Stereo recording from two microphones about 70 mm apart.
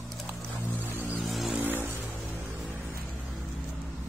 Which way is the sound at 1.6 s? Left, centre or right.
Right.